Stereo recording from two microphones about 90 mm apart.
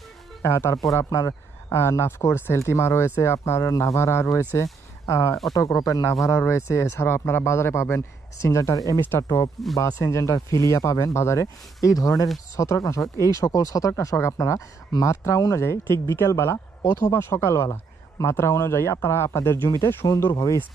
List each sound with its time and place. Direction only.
0.5 s speech: 30° left (ahead or behind)